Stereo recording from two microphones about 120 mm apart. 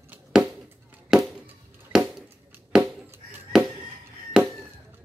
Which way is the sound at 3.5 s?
5° right (ahead or behind).